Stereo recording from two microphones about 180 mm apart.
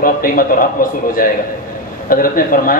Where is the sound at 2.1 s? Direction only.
50° left (ahead or behind).